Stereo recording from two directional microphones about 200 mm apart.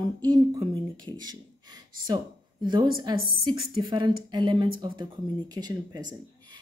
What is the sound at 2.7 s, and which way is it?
A woman's voice, 25° right (ahead or behind).